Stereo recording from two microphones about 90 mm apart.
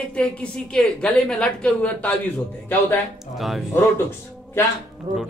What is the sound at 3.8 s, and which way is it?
Speech, 25° left (ahead or behind).